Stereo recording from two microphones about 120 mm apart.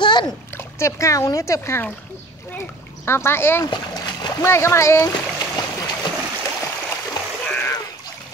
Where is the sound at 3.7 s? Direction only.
35° left (ahead or behind).